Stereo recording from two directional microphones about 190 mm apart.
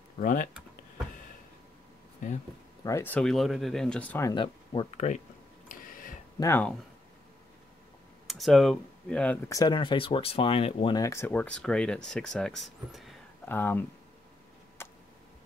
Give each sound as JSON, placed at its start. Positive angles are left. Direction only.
{"t": 0.2, "sound": "speech", "side_deg": 45}
{"t": 2.8, "sound": "speech", "side_deg": 15}
{"t": 4.3, "sound": "speech", "side_deg": 25}
{"t": 5.7, "sound": "a sound", "side_deg": 45}
{"t": 6.4, "sound": "speech", "side_deg": 10}
{"t": 8.3, "sound": "speech", "side_deg": 0}
{"t": 11.0, "sound": "speech", "side_deg": 15}
{"t": 13.5, "sound": "speech", "side_deg": 10}
{"t": 14.8, "sound": "tick", "side_deg": 15}